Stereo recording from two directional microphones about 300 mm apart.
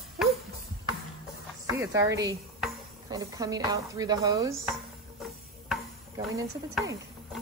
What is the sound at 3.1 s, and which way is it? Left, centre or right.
Speech, centre.